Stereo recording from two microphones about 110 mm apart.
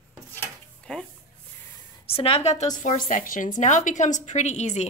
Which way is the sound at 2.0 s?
65° left (ahead or behind).